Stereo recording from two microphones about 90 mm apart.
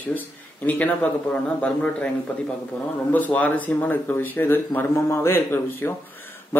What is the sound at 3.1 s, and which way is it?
Speech, 15° left (ahead or behind).